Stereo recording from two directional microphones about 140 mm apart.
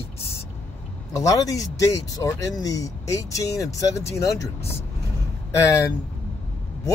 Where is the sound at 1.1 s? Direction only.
25° left (ahead or behind).